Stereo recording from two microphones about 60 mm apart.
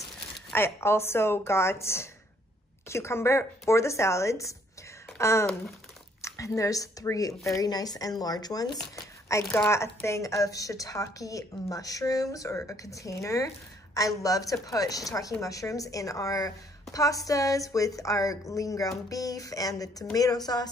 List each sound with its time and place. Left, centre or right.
0.6 s a woman's voice: left
9.3 s a woman's voice: left
13.9 s a woman's voice: left